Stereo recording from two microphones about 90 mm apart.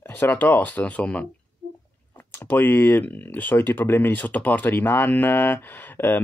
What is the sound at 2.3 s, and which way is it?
Speech, 20° left (ahead or behind).